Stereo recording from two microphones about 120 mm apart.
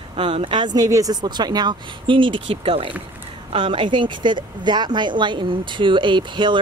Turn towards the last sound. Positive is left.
turn(degrees=-40)  # may be behind; listen again after turning